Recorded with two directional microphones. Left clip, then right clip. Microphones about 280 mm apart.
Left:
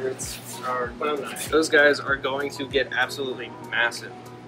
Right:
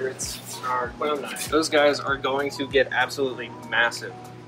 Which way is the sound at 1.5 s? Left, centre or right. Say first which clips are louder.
Left 2 dB; right.